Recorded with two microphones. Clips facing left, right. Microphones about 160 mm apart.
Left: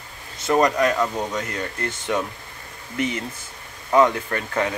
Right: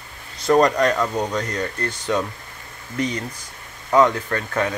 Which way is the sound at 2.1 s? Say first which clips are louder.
Right 2 dB; 15° left (ahead or behind).